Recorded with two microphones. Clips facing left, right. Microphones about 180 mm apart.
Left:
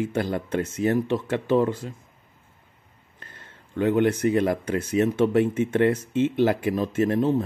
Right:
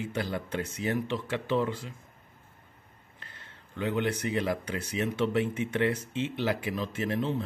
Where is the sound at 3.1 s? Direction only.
45° left (ahead or behind).